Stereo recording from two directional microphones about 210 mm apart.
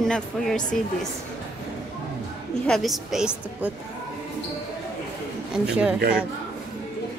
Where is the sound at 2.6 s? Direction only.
Centre (ahead or behind).